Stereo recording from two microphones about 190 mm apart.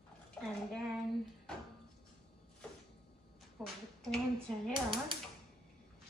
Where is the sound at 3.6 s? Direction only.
Centre (ahead or behind).